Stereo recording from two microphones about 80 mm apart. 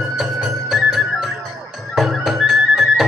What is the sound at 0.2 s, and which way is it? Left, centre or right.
Music, centre.